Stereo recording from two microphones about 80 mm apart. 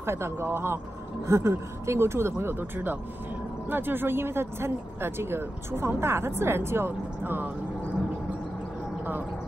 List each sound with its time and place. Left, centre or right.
0.0 s speech: right